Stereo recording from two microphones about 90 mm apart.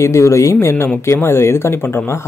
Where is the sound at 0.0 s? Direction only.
35° left (ahead or behind).